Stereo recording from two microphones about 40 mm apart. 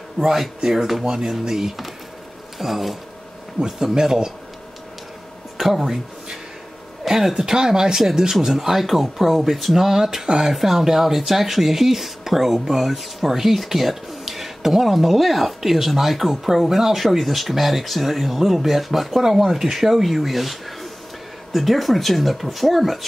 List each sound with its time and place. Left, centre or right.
0.2 s speech: centre
3.6 s speech: centre
5.6 s speech: centre
7.1 s speech: centre